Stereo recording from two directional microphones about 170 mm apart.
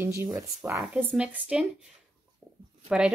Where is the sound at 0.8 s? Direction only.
5° right (ahead or behind).